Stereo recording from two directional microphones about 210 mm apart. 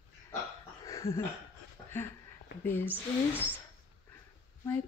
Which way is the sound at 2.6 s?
10° left (ahead or behind).